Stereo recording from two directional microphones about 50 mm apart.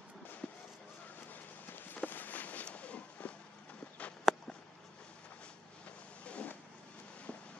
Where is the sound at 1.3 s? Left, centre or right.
Left.